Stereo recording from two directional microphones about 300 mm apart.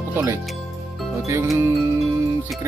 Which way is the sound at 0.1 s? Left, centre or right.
Centre.